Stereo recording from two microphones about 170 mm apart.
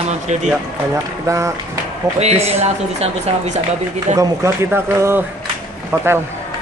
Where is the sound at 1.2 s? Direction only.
20° right (ahead or behind).